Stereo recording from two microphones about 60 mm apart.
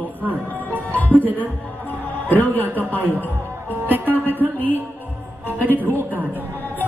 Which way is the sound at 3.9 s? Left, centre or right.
Right.